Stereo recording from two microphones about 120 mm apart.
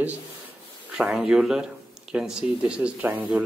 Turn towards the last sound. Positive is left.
turn(degrees=-10)  # may be behind; listen again after turning